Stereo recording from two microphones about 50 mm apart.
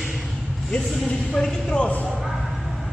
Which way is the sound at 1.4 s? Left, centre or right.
Centre.